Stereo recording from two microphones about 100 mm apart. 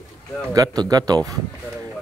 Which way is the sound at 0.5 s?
40° right (ahead or behind).